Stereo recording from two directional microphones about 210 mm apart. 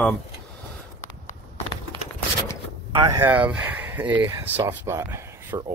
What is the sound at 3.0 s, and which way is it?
Speech, 15° right (ahead or behind).